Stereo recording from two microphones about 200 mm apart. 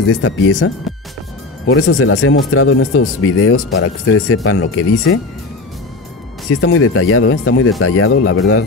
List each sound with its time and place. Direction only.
0.1 s speech: 85° left
6.6 s speech: 90° left